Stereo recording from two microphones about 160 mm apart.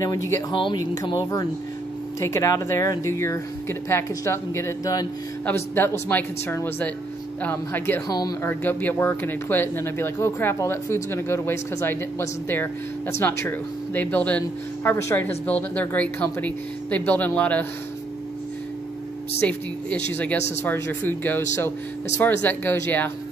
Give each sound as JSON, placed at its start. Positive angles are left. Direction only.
{"t": 0.0, "sound": "speech", "side_deg": 20}
{"t": 8.1, "sound": "speech", "side_deg": 25}
{"t": 8.5, "sound": "speech", "side_deg": 10}
{"t": 19.4, "sound": "speech", "side_deg": 10}